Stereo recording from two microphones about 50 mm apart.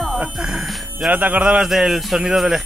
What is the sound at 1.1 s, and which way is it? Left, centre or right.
Speech, right.